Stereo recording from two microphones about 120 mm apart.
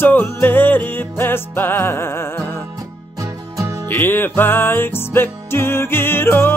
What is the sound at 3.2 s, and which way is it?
Music, 25° right (ahead or behind).